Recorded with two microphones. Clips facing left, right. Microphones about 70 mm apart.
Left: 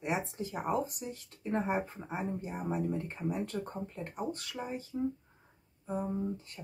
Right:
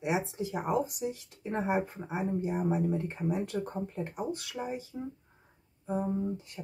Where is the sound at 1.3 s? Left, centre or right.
Centre.